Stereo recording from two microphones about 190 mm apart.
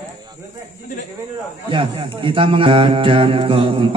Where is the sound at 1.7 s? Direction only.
25° right (ahead or behind).